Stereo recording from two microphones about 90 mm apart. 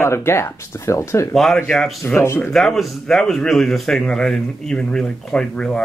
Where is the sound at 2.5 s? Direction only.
5° left (ahead or behind).